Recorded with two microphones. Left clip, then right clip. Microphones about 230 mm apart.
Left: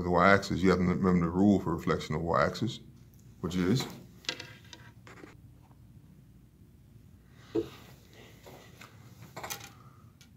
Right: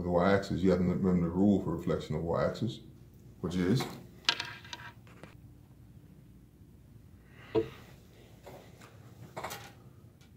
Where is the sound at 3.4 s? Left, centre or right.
Centre.